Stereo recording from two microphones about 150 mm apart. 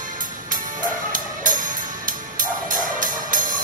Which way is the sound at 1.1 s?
60° right (ahead or behind).